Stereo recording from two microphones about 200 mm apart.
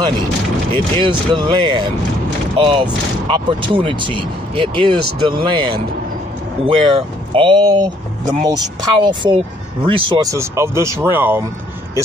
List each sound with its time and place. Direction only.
0.9 s speech: 25° right (ahead or behind)